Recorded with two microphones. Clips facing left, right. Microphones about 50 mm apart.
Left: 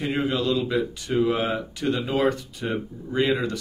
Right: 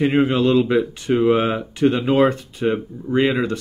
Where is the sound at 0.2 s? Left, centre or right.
Right.